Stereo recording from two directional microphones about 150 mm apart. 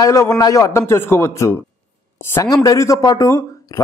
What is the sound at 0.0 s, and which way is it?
A man's voice, 20° left (ahead or behind).